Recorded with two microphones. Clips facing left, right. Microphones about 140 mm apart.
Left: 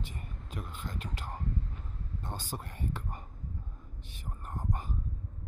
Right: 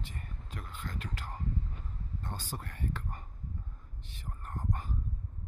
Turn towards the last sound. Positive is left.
turn(degrees=15)  # may be behind; listen again after turning